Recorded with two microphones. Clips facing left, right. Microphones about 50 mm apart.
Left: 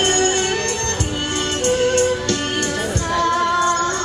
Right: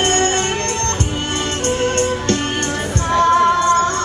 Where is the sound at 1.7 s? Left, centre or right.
Right.